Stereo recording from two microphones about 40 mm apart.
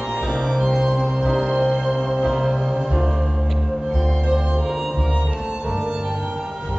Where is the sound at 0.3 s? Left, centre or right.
Centre.